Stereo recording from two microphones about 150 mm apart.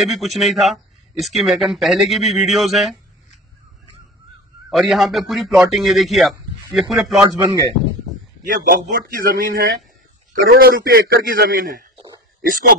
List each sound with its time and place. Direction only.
0.0 s speech: centre (ahead or behind)
4.6 s speech: centre (ahead or behind)
7.2 s a man's voice: 30° right (ahead or behind)
8.5 s a man's voice: 70° right (ahead or behind)
10.3 s a man's voice: 90° right
12.4 s a man's voice: 65° right (ahead or behind)